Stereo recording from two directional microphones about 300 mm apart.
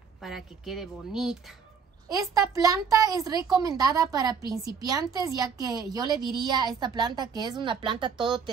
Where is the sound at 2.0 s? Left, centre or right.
Centre.